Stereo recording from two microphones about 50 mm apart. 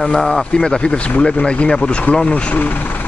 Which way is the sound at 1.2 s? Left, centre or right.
Centre.